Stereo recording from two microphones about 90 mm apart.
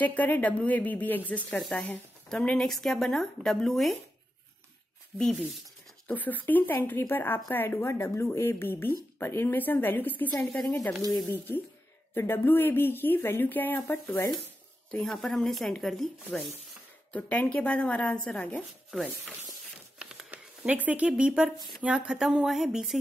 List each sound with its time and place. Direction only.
0.0 s speech: 20° left (ahead or behind); by 4.0 s centre (ahead or behind)
5.1 s a woman's voice: 15° left (ahead or behind)
15.0 s speech: 5° left (ahead or behind)
17.1 s speech: 15° left (ahead or behind)
18.9 s speech: centre (ahead or behind)
20.2 s speech: 15° right (ahead or behind)